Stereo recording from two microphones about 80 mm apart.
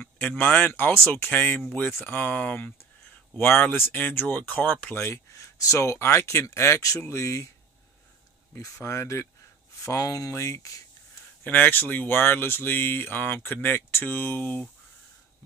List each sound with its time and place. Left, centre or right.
0.0 s speech: centre
4.9 s speech: left
8.8 s speech: left
11.4 s speech: left